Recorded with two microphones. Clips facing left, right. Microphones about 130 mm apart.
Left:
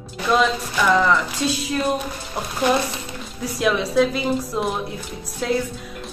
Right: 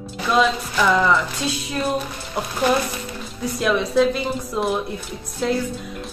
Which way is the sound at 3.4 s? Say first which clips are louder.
Even; centre (ahead or behind).